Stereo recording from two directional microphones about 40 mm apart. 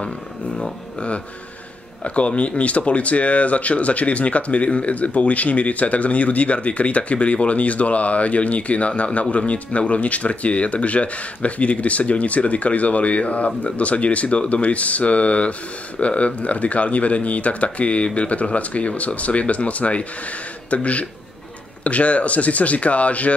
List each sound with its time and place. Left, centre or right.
0.9 s speech: left